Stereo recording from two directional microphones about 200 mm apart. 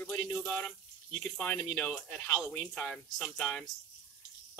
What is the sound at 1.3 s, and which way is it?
Speech, 5° left (ahead or behind).